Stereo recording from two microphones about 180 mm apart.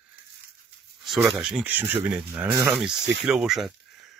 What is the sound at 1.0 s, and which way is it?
Speech, centre (ahead or behind).